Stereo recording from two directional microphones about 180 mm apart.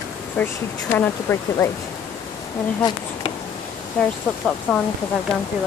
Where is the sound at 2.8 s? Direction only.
25° left (ahead or behind).